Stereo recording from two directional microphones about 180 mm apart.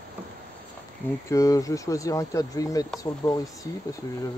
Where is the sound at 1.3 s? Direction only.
20° left (ahead or behind).